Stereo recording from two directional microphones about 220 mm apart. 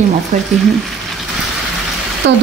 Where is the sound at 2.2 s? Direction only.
55° right (ahead or behind).